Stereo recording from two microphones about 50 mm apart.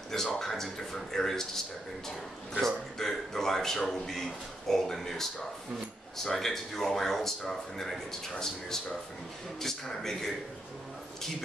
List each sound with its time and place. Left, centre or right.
0.1 s speech: centre
2.6 s speech: centre